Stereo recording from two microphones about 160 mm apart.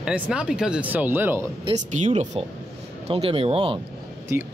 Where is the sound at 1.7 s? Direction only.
50° right (ahead or behind).